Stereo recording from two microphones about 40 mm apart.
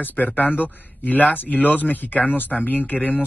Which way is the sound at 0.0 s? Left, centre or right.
Left.